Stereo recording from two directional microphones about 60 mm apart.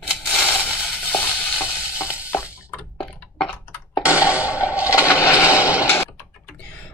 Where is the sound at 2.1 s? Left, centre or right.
Left.